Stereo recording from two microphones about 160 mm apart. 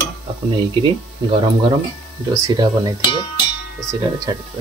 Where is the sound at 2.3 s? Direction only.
25° right (ahead or behind).